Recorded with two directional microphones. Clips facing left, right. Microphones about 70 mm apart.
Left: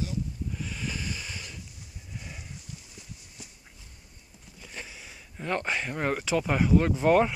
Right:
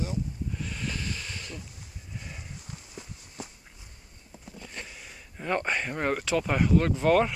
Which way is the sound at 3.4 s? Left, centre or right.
Right.